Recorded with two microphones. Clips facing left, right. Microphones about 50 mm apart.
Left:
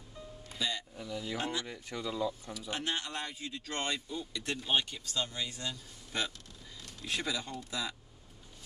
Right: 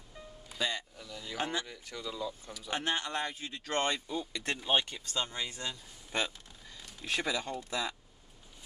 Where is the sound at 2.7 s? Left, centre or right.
Right.